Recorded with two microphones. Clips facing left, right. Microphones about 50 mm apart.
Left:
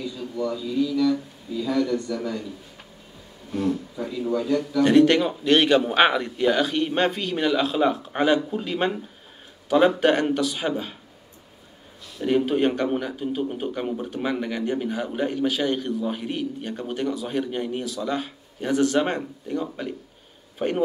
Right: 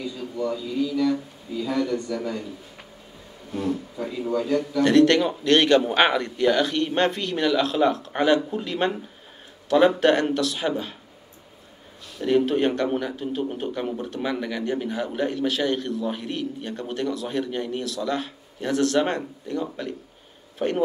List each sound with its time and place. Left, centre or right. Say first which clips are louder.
0.5 s a man's voice: left 2 dB; right
3.7 s speech: even; centre
4.3 s speech: even; right
4.8 s a man's voice: even; centre
12.2 s a man's voice: even; centre